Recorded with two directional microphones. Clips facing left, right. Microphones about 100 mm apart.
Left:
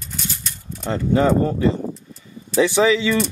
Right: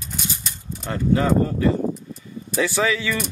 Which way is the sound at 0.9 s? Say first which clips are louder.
Left 2 dB; 25° left (ahead or behind).